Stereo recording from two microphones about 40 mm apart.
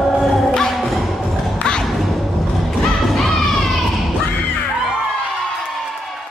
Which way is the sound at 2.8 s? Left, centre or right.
Centre.